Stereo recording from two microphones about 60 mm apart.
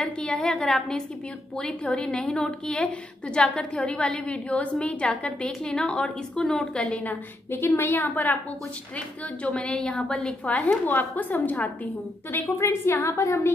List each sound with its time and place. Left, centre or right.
0.2 s a woman's voice: centre
7.0 s a woman's voice: left; by 10.3 s centre
10.4 s a woman's voice: left
12.5 s a woman's voice: left
13.0 s a woman's voice: left